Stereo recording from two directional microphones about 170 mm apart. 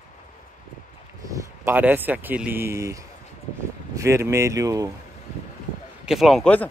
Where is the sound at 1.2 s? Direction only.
15° right (ahead or behind).